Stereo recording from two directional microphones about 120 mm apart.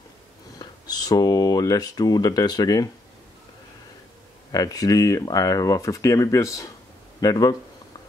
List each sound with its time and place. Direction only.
0.6 s speech: 35° left (ahead or behind)
4.5 s speech: 30° left (ahead or behind)